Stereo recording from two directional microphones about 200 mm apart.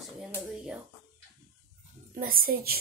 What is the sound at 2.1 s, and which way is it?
Speech, 45° right (ahead or behind).